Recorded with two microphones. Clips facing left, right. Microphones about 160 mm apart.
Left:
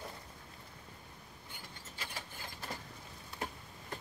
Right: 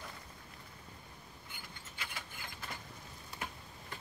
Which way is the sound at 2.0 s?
35° left (ahead or behind).